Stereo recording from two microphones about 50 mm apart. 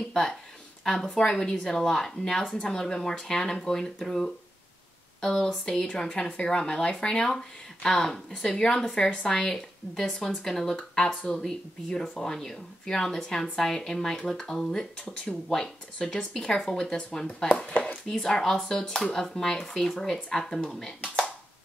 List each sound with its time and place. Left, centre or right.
1.1 s speech: centre
18.0 s speech: centre